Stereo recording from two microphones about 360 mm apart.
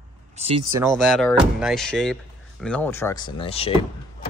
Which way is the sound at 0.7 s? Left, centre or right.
Centre.